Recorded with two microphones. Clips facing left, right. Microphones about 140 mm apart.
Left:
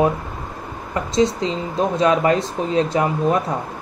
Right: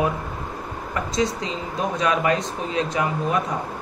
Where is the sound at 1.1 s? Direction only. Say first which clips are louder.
Left 7 dB; 25° left (ahead or behind).